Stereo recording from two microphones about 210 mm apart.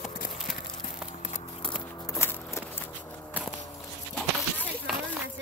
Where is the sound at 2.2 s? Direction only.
10° left (ahead or behind).